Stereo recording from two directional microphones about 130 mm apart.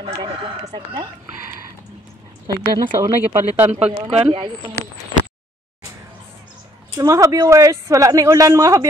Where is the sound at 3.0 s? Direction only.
20° right (ahead or behind).